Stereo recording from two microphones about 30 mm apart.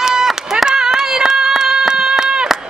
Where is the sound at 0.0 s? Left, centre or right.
Centre.